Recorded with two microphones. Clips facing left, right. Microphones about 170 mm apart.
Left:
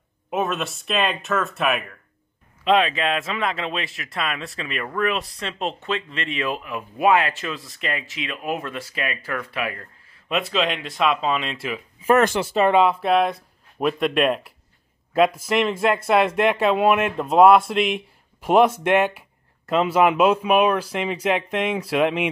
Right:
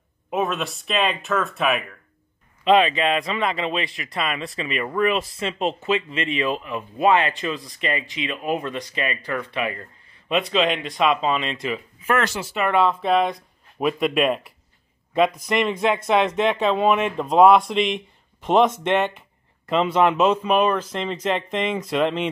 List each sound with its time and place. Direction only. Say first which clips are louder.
0.3 s speech: even; centre (ahead or behind)
12.0 s speech: left 6 dB; 35° left (ahead or behind)
12.3 s speech: left 6 dB; 55° left (ahead or behind)
12.5 s speech: left 3 dB; 25° left (ahead or behind)
12.8 s speech: left 1 dB; 5° left (ahead or behind)